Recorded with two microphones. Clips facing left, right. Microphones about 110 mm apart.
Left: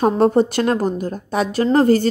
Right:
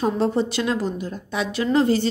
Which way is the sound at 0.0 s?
50° left (ahead or behind).